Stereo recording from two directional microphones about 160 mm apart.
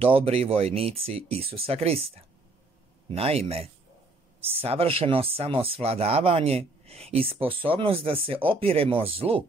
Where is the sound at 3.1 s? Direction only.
40° right (ahead or behind).